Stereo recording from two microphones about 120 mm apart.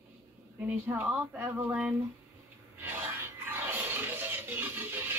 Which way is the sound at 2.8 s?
15° right (ahead or behind).